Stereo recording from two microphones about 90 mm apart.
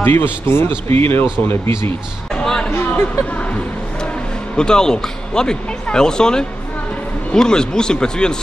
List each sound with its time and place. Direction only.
0.0 s a man's voice: 25° left (ahead or behind)
2.3 s basketball bounce: 10° left (ahead or behind)
2.9 s speech: 15° left (ahead or behind)
4.6 s speech: 10° left (ahead or behind)